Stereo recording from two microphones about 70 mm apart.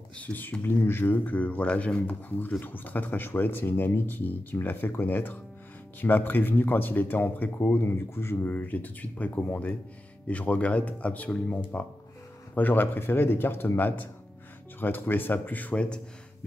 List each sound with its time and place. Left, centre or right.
0.2 s speech: left